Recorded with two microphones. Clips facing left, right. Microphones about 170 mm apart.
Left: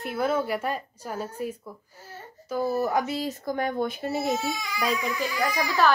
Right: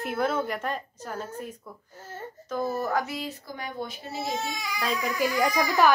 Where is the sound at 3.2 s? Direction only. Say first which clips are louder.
Left 8 dB; 50° left (ahead or behind).